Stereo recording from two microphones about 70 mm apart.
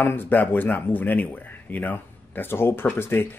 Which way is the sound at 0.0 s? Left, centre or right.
Left.